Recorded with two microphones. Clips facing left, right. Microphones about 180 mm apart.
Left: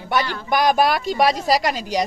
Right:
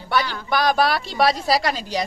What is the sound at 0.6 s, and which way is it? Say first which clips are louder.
Speech: left 2 dB; 45° left (ahead or behind).